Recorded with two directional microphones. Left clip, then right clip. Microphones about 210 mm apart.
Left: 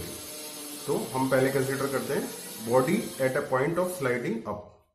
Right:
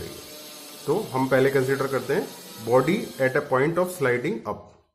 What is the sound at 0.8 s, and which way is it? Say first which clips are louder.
Speech: right 4 dB; 45° right (ahead or behind).